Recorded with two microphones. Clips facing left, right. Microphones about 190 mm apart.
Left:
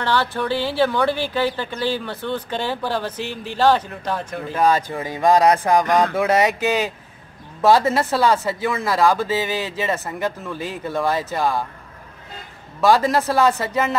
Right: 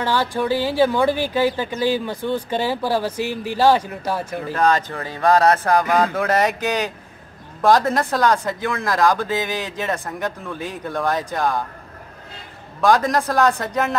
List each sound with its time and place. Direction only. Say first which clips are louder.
0.0 s a woman's voice: right 1 dB; 10° right (ahead or behind)
4.5 s speech: left 1 dB; 10° left (ahead or behind)
5.9 s a woman's voice: left 1 dB; 10° right (ahead or behind)
6.1 s speech: left 1 dB; 10° left (ahead or behind)
12.8 s speech: left 1 dB; 5° left (ahead or behind)